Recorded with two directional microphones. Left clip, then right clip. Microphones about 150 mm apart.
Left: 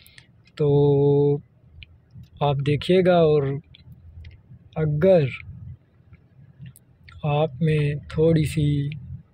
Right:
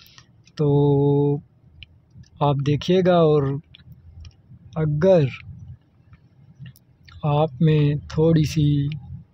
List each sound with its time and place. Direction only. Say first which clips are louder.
0.1 s mantra: even; 20° right (ahead or behind)
2.3 s speech: right 1 dB; 25° right (ahead or behind)
4.2 s a sound: even; 20° right (ahead or behind)
7.1 s speech: right 2 dB; 25° right (ahead or behind)